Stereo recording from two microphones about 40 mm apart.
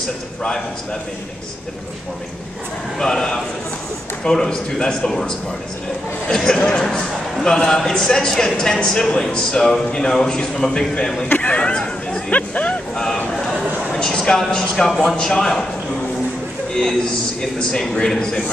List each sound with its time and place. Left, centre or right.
3.0 s speech: centre
11.2 s a sound: left
11.5 s chatter: left
12.3 s speech: left
12.9 s vehicle: centre
13.9 s speech: centre
16.7 s speech: centre